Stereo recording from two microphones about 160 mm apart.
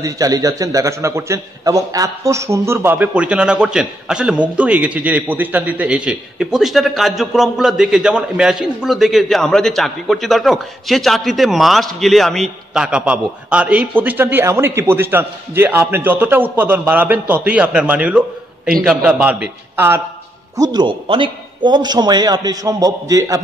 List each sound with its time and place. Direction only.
0.0 s a man's voice: 20° right (ahead or behind)
20.5 s a man's voice: 25° right (ahead or behind)